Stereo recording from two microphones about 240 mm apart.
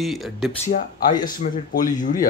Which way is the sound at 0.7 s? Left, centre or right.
Left.